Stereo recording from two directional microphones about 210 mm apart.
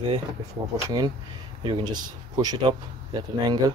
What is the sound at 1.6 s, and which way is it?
Speech, 20° right (ahead or behind).